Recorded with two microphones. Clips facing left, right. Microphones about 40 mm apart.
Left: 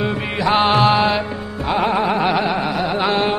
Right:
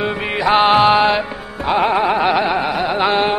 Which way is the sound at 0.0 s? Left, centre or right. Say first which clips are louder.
Right 2 dB; centre.